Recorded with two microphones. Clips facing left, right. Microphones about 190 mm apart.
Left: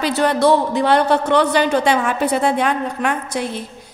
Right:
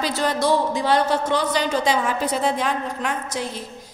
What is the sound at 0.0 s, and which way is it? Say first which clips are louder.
A woman's voice: left 6 dB; 65° left (ahead or behind).